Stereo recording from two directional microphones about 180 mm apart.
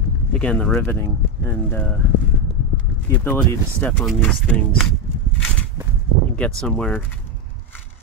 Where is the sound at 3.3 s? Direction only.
5° left (ahead or behind).